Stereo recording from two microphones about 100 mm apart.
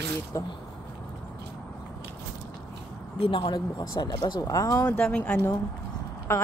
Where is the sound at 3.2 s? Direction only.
60° left (ahead or behind).